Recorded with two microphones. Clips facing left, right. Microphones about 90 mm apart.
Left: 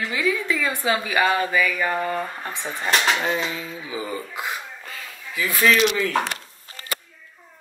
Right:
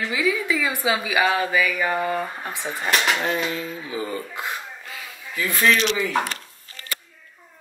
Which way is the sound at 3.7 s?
20° left (ahead or behind).